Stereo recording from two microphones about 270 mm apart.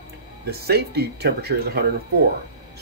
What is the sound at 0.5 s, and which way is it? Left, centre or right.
Speech, right.